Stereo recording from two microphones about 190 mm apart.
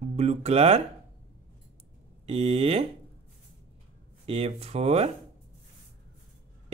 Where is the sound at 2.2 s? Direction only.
35° right (ahead or behind).